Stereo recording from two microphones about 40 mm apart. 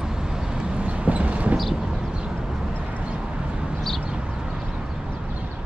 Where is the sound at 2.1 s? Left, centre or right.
Right.